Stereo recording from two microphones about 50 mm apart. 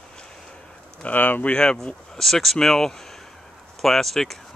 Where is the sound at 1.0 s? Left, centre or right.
Left.